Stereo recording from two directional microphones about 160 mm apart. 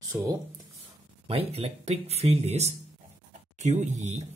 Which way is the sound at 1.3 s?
35° right (ahead or behind).